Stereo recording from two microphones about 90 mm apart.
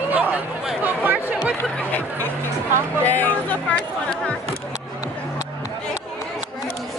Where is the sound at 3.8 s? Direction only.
10° left (ahead or behind).